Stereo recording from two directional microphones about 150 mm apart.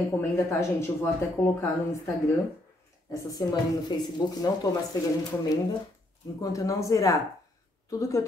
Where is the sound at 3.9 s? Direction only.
30° left (ahead or behind).